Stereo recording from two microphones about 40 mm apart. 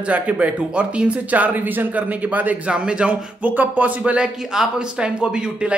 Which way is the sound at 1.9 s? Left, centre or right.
Right.